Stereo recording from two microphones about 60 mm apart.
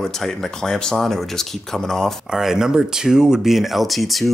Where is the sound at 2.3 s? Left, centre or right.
Centre.